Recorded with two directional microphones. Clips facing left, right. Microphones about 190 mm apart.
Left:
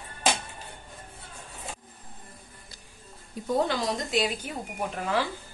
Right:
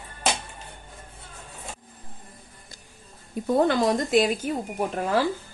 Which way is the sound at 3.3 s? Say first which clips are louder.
Right 7 dB; 55° right (ahead or behind).